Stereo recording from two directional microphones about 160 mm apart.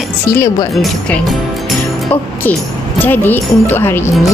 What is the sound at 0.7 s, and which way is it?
Speech, centre (ahead or behind).